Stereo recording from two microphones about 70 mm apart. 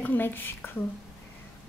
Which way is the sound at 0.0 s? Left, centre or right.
Left.